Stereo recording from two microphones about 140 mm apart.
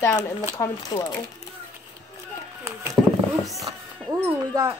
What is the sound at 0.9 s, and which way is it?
Speech, 35° left (ahead or behind).